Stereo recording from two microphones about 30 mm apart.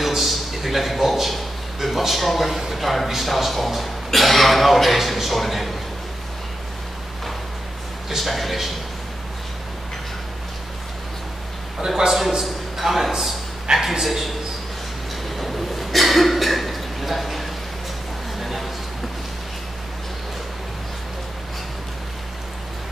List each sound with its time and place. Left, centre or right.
0.0 s a sound: centre
2.7 s speech: centre
8.2 s speech: centre
12.1 s a man's voice: centre
14.0 s speech: centre
15.3 s a sound: centre